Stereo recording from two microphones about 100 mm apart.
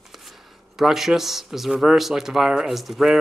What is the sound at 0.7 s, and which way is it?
Speech, 5° right (ahead or behind).